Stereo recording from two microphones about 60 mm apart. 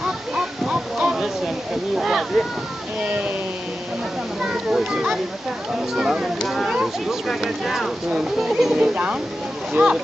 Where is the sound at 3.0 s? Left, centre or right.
Right.